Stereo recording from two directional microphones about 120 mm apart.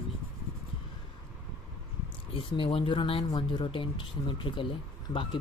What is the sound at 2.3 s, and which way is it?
Speech, 45° left (ahead or behind).